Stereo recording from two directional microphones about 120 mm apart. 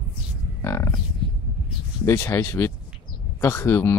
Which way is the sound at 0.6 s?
25° left (ahead or behind).